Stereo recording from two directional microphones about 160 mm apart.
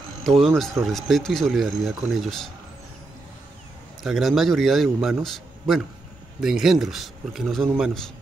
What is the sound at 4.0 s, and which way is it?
A man's voice, centre (ahead or behind).